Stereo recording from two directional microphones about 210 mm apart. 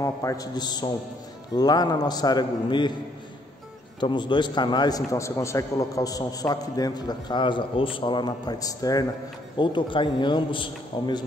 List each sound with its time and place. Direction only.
0.0 s a man's voice: 15° left (ahead or behind)
4.0 s a man's voice: 20° left (ahead or behind)